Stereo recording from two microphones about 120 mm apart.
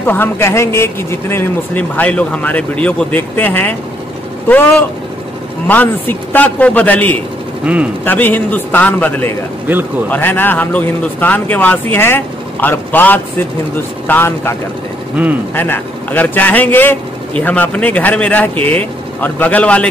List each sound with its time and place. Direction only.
0.0 s a man's voice: 15° left (ahead or behind)
7.7 s a man's voice: 10° right (ahead or behind)
8.0 s a man's voice: 15° left (ahead or behind)
15.5 s a man's voice: 15° left (ahead or behind)